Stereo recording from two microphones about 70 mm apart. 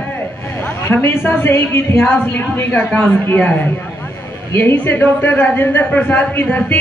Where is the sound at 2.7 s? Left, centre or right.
Centre.